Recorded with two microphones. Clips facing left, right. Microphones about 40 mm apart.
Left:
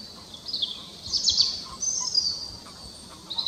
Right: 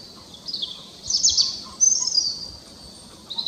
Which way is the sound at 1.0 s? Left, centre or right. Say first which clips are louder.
Right 2 dB; centre.